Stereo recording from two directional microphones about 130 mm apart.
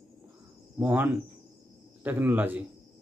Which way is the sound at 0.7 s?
15° right (ahead or behind).